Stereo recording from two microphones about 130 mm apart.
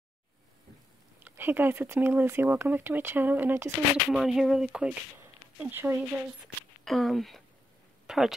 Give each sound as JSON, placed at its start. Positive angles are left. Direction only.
{"t": 1.2, "sound": "speech", "side_deg": -15}
{"t": 4.1, "sound": "speech", "side_deg": 0}
{"t": 5.2, "sound": "speech", "side_deg": -15}
{"t": 6.8, "sound": "speech", "side_deg": 0}